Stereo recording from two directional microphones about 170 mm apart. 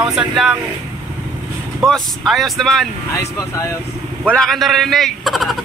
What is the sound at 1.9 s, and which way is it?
Speech, centre (ahead or behind).